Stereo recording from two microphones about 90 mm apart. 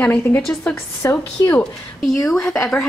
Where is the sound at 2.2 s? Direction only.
5° left (ahead or behind).